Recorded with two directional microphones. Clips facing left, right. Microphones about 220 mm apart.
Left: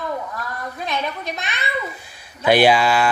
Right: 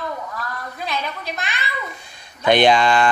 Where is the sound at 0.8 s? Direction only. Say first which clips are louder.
Left 1 dB; 20° left (ahead or behind).